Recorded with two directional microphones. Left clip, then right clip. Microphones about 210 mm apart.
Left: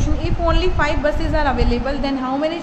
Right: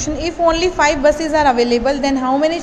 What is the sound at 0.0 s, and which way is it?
A woman's voice, 30° right (ahead or behind).